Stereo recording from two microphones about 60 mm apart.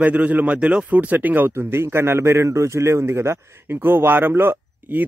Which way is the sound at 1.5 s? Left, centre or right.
Right.